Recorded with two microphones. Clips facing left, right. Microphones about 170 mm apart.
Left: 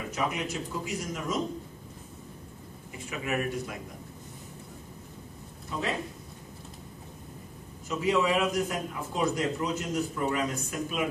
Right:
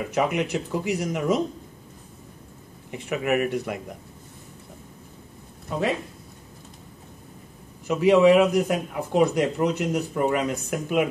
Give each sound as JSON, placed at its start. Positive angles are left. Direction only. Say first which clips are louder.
{"t": 0.1, "sound": "speech", "louder": "right 8 dB", "side_deg": -65}
{"t": 2.9, "sound": "speech", "louder": "right 8 dB", "side_deg": -65}
{"t": 7.9, "sound": "speech", "louder": "right 10 dB", "side_deg": -70}